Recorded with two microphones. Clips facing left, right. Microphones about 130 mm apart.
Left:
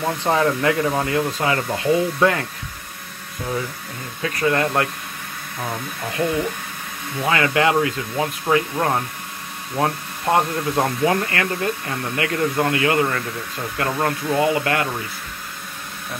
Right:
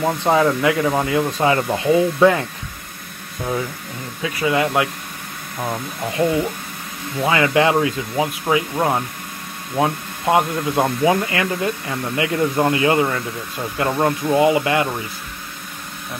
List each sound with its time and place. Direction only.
0.0 s speech: 15° right (ahead or behind)
4.2 s speech: 10° right (ahead or behind)
6.2 s speech: 20° right (ahead or behind)